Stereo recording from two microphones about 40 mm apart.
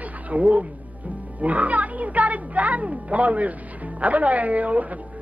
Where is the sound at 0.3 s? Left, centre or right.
Right.